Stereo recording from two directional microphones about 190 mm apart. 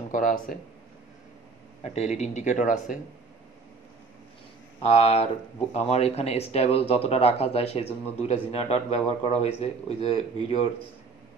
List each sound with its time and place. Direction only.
0.1 s speech: 45° left (ahead or behind)
1.8 s speech: 35° left (ahead or behind)
4.8 s speech: 30° left (ahead or behind)